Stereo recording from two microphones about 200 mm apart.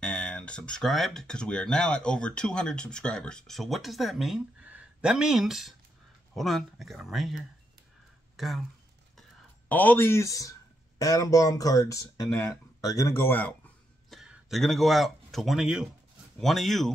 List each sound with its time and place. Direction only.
0.0 s speech: 5° left (ahead or behind)
9.7 s speech: 10° left (ahead or behind)